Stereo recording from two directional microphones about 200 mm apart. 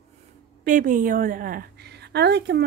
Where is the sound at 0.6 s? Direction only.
40° right (ahead or behind).